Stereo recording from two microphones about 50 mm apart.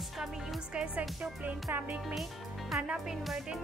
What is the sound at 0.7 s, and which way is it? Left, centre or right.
Speech, right.